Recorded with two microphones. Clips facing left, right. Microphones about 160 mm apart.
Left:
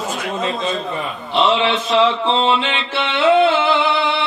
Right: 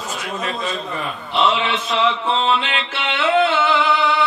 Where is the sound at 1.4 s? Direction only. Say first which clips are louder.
Left 3 dB; 30° left (ahead or behind).